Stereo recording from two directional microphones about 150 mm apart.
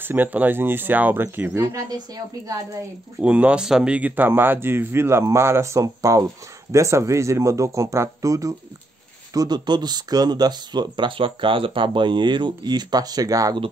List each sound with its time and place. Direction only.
0.0 s speech: 15° right (ahead or behind)
3.2 s speech: 10° right (ahead or behind); by 13.6 s 25° right (ahead or behind)